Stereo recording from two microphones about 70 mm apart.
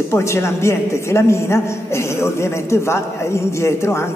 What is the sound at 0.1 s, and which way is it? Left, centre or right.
A man's voice, left.